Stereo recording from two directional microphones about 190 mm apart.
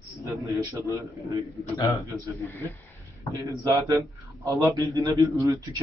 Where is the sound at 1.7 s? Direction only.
15° left (ahead or behind).